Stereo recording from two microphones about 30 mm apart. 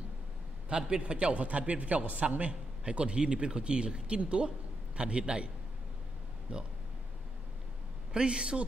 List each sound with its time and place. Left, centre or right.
0.7 s a man's voice: right
1.0 s a man's voice: right
6.5 s speech: right
8.1 s speech: right